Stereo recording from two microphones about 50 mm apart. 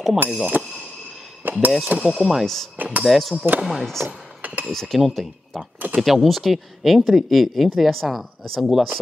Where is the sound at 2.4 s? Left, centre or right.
Centre.